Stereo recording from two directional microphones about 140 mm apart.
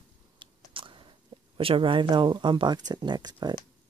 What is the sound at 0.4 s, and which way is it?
Biting, 35° right (ahead or behind).